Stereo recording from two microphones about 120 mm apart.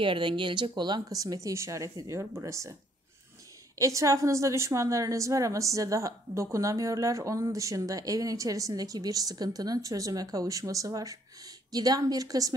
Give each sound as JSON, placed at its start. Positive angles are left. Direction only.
{"t": 0.0, "sound": "a woman's voice", "side_deg": -45}
{"t": 3.7, "sound": "a woman's voice", "side_deg": -25}